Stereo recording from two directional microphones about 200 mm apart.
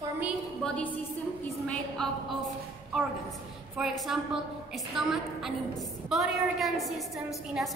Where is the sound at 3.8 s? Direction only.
5° right (ahead or behind).